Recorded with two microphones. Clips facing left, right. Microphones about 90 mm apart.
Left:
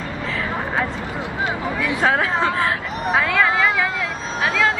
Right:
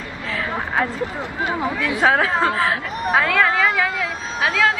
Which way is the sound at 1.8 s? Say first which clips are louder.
Right 1 dB; centre (ahead or behind).